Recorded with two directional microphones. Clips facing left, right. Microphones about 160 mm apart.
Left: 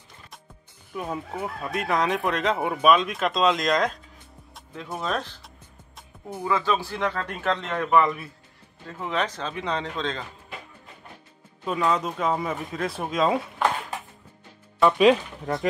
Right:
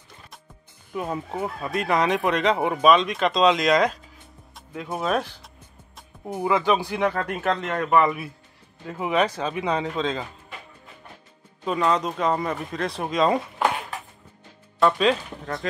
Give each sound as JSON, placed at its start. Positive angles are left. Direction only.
{"t": 0.9, "sound": "speech", "side_deg": -5}
{"t": 11.6, "sound": "speech", "side_deg": 0}
{"t": 15.0, "sound": "speech", "side_deg": 15}